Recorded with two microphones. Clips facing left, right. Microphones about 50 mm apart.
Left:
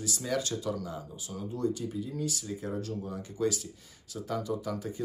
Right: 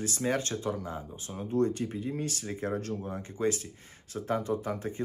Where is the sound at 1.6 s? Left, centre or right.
Right.